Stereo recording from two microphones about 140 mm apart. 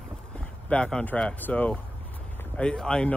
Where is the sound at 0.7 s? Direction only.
5° left (ahead or behind).